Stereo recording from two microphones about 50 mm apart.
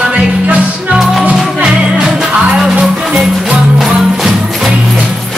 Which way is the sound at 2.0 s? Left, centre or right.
Centre.